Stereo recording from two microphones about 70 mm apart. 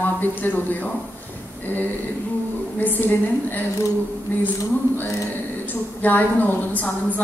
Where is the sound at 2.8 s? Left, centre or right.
Left.